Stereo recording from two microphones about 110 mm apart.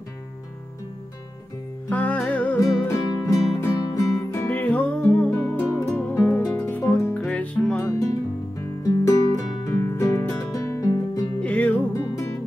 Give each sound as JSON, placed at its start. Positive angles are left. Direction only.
{"t": 1.9, "sound": "music", "side_deg": 15}
{"t": 2.5, "sound": "music", "side_deg": 30}
{"t": 4.6, "sound": "music", "side_deg": 15}
{"t": 6.8, "sound": "music", "side_deg": 25}
{"t": 7.2, "sound": "music", "side_deg": 10}
{"t": 8.5, "sound": "music", "side_deg": 30}
{"t": 11.4, "sound": "music", "side_deg": 10}
{"t": 11.9, "sound": "music", "side_deg": 30}